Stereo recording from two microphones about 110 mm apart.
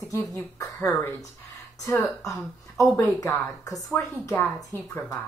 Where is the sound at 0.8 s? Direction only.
20° left (ahead or behind).